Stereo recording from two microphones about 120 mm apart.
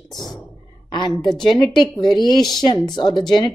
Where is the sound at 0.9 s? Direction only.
40° left (ahead or behind).